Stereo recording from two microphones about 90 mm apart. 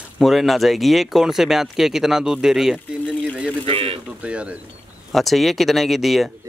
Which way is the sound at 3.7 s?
90° right.